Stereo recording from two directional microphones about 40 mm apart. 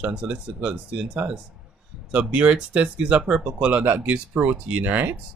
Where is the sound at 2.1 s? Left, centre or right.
Right.